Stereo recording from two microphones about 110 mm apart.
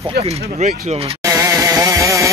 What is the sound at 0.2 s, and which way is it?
Speech, 90° right.